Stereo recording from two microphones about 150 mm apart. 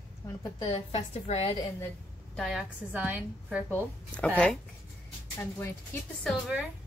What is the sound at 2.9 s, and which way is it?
Speech, 10° right (ahead or behind).